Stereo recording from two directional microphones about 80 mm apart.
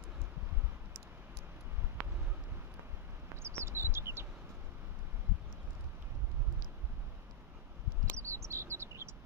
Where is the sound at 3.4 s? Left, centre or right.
Right.